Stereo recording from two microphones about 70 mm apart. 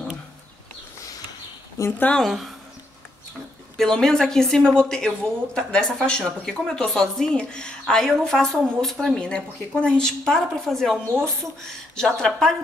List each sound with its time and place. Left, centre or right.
1.8 s a woman's voice: left
2.2 s a woman's voice: centre
3.7 s speech: centre